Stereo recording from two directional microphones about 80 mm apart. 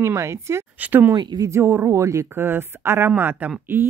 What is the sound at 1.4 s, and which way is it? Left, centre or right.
Speech, right.